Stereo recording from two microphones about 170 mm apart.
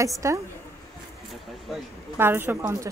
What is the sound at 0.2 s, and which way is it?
Speech, 15° right (ahead or behind).